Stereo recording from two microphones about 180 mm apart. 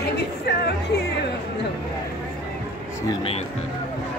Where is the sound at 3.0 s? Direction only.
30° left (ahead or behind).